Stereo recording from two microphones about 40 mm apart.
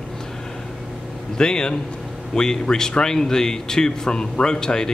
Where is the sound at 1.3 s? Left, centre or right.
Centre.